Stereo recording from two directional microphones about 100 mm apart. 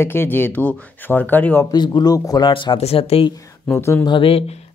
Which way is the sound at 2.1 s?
35° left (ahead or behind).